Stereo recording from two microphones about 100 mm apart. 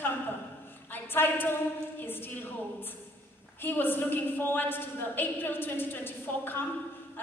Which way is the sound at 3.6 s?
20° left (ahead or behind).